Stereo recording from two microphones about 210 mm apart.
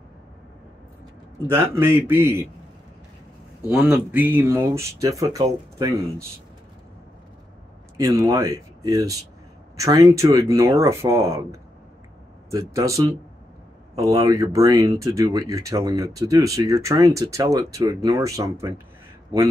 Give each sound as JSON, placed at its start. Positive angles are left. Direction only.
{"t": 1.5, "sound": "speech", "side_deg": -10}
{"t": 3.7, "sound": "speech", "side_deg": -5}
{"t": 8.0, "sound": "speech", "side_deg": -15}
{"t": 12.4, "sound": "speech", "side_deg": -15}